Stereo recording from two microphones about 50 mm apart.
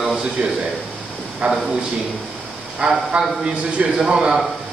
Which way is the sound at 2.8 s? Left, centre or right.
Centre.